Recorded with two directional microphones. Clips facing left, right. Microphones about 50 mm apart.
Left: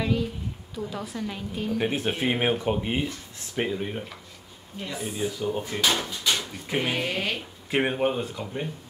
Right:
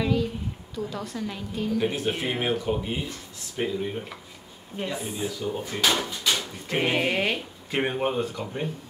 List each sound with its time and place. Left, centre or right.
0.0 s a sound: centre
0.7 s a woman's voice: centre
1.8 s speech: left
5.0 s speech: centre
5.9 s a woman's voice: centre
6.8 s speech: right
7.7 s a woman's voice: centre